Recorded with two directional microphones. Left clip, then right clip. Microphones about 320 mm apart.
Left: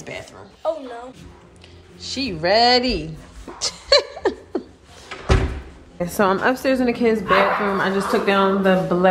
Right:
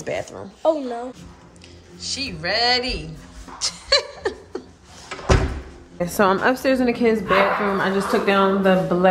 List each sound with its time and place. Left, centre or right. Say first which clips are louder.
0.3 s speech: right 4 dB; right
2.0 s a woman's voice: left 2 dB; centre
3.5 s beatboxing: left 3 dB; centre
5.9 s a woman's voice: right 1 dB; centre